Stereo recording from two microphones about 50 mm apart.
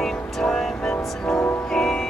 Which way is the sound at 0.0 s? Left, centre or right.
Centre.